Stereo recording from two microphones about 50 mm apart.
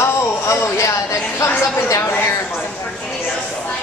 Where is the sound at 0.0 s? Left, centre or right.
Left.